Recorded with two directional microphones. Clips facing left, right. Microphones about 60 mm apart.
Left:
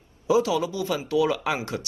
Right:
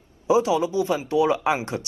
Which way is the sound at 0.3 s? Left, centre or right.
Right.